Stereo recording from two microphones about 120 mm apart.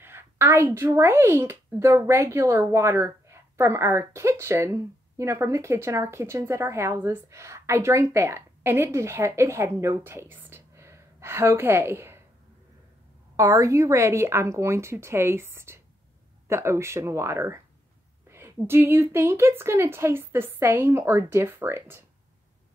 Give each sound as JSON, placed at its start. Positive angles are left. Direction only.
{"t": 0.0, "sound": "a sound", "side_deg": -20}
{"t": 0.9, "sound": "speech", "side_deg": -20}
{"t": 13.4, "sound": "speech", "side_deg": -25}
{"t": 18.7, "sound": "speech", "side_deg": -20}